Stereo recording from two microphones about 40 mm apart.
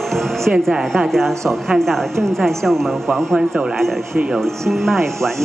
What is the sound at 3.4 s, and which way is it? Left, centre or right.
Speech, centre.